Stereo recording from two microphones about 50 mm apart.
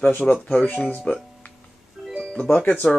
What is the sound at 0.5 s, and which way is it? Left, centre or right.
Speech, left.